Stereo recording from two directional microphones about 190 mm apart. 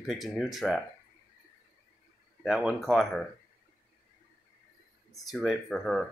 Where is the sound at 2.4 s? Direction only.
Centre (ahead or behind).